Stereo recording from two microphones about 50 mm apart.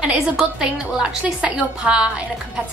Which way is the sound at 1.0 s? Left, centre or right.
Right.